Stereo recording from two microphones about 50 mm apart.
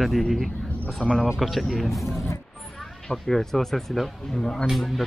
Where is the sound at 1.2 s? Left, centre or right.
Centre.